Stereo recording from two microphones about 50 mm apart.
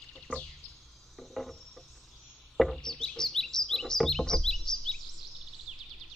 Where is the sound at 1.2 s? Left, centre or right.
Centre.